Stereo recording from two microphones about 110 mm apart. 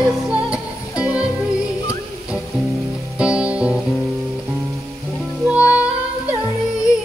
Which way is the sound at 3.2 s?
10° right (ahead or behind).